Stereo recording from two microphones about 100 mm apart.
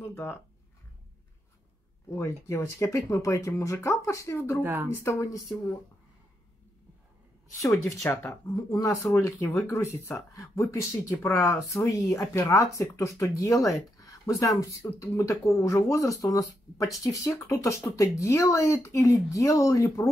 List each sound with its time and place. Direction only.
0.0 s speech: 25° left (ahead or behind)
2.0 s speech: 30° left (ahead or behind)
7.6 s speech: 30° left (ahead or behind)